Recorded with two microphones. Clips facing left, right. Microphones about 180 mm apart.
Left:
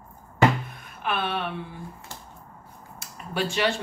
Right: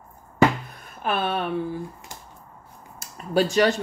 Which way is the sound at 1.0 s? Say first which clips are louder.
Right 3 dB; 40° right (ahead or behind).